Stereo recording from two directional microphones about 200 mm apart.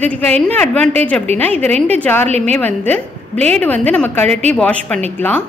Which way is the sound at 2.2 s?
30° right (ahead or behind).